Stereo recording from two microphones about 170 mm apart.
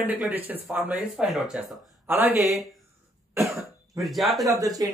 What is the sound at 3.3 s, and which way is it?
Cough, 15° right (ahead or behind).